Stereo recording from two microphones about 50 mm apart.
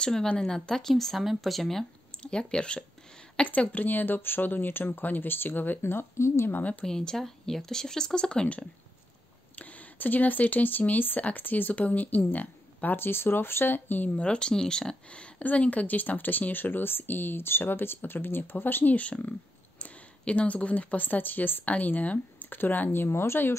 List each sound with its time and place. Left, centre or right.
0.0 s speech: centre
2.1 s speech: centre
3.7 s speech: left
6.6 s speech: left
6.9 s speech: centre; by 14.2 s left
14.2 s speech: centre; by 18.9 s left
18.9 s speech: left
22.9 s speech: left